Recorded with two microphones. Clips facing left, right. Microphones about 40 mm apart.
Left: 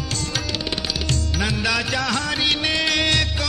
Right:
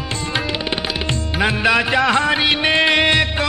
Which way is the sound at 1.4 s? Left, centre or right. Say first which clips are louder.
Right 7 dB; right.